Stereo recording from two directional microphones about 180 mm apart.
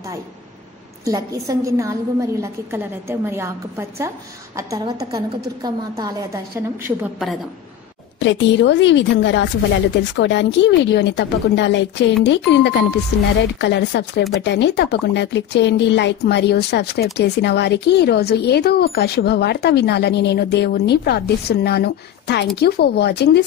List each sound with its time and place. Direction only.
1.0 s a woman's voice: 20° right (ahead or behind)
7.0 s a woman's voice: centre (ahead or behind)
8.2 s speech: 85° left; by 23.4 s 65° left (ahead or behind)